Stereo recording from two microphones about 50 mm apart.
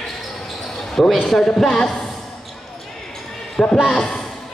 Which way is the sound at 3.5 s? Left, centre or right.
Centre.